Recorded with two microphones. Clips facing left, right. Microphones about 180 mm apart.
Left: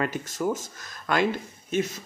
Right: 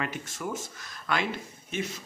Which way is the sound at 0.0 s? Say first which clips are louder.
Left 7 dB; 40° left (ahead or behind).